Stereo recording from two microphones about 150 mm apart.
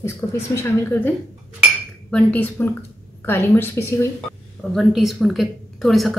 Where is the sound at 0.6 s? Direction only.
15° left (ahead or behind).